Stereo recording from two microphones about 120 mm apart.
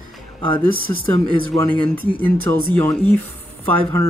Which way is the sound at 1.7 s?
15° left (ahead or behind).